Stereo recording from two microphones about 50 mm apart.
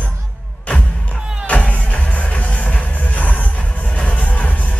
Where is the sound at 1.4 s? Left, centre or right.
Left.